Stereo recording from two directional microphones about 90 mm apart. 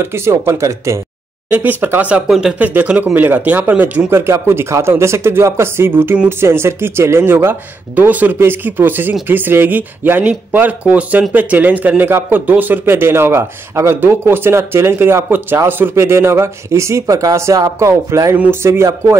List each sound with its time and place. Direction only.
0.0 s speech: 30° right (ahead or behind)
1.5 s speech: 20° right (ahead or behind)
2.2 s speech: 5° right (ahead or behind)
2.6 s speech: 20° right (ahead or behind); by 18.3 s 35° right (ahead or behind)
18.3 s speech: 25° right (ahead or behind)